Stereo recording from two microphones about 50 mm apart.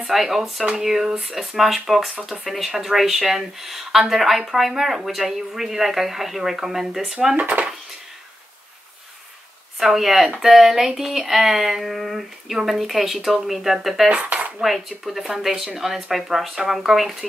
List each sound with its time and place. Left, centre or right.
0.0 s speech: centre
7.3 s speech: right
9.8 s speech: centre
14.1 s speech: right
14.6 s speech: centre